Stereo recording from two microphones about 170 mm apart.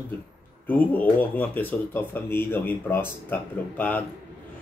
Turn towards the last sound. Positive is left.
turn(degrees=10)  # may be behind; listen again after turning